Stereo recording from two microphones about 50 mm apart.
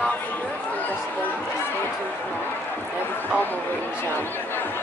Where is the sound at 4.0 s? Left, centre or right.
Left.